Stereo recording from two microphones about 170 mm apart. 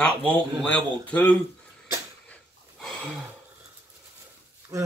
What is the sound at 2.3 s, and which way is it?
Snort, centre (ahead or behind).